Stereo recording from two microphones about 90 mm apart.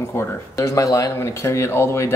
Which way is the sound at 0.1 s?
35° left (ahead or behind).